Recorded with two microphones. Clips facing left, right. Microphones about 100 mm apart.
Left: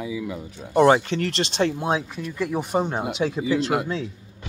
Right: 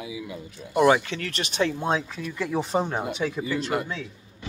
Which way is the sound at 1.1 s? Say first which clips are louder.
Left 7 dB; 80° left.